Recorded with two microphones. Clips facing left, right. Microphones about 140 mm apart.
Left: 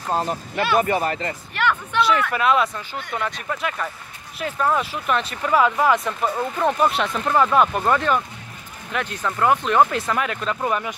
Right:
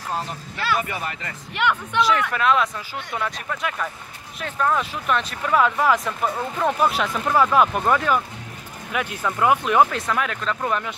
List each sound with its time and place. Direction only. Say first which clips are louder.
0.1 s speech: left 7 dB; 45° left (ahead or behind)
1.5 s speech: even; 15° right (ahead or behind)
2.0 s speech: left 1 dB; centre (ahead or behind)
9.8 s speech: left 1 dB; centre (ahead or behind)